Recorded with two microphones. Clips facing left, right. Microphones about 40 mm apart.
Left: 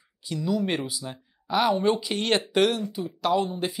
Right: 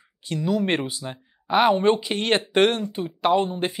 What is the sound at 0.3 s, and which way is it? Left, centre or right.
Speech, right.